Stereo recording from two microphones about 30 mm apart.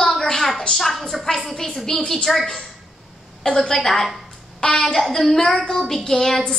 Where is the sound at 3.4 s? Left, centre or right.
Centre.